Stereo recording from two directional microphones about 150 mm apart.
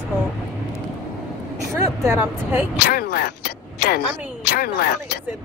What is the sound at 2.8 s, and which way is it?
Speech, 90° left.